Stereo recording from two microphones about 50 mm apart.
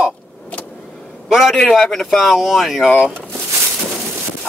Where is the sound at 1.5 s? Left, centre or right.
Centre.